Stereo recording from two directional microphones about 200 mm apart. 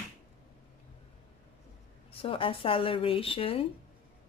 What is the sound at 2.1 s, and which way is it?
Speech, 25° left (ahead or behind).